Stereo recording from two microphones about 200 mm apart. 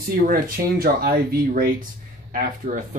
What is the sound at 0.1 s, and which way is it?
Speech, 50° right (ahead or behind).